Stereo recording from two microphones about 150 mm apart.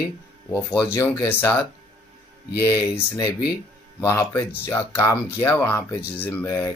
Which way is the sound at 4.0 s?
20° left (ahead or behind).